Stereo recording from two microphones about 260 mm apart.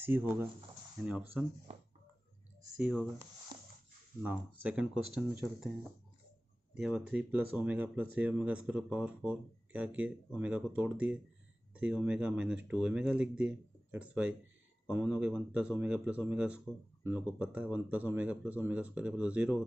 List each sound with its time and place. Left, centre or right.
0.0 s speech: centre
2.8 s speech: centre
6.8 s speech: centre